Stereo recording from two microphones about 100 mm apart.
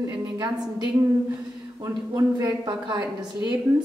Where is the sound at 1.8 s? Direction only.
35° right (ahead or behind).